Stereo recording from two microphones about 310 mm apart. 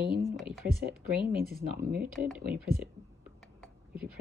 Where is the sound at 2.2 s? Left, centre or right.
Centre.